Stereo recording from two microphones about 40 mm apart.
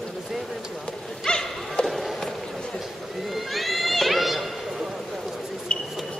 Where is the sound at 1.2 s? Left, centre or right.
Centre.